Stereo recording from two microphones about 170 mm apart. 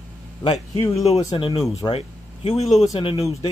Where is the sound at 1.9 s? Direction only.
35° left (ahead or behind).